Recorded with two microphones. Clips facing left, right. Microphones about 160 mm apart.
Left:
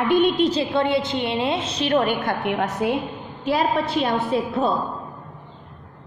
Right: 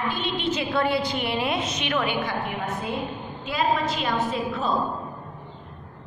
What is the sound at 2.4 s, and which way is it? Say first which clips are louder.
A woman's voice: left 7 dB; 75° left (ahead or behind).